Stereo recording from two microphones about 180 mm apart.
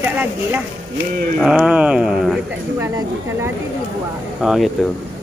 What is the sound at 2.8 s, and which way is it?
Speech, 15° right (ahead or behind).